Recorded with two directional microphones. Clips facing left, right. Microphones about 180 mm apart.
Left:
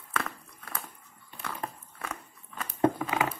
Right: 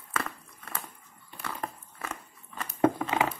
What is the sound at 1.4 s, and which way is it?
Dog, 5° right (ahead or behind).